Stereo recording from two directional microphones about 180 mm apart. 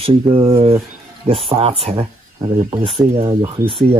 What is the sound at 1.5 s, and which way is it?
A man's voice, 30° right (ahead or behind).